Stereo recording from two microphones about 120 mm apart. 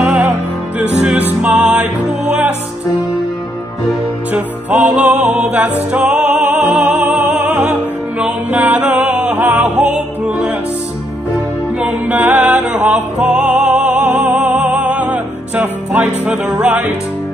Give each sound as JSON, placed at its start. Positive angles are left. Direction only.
{"t": 1.0, "sound": "music", "side_deg": -10}
{"t": 4.3, "sound": "music", "side_deg": -15}
{"t": 11.8, "sound": "music", "side_deg": -15}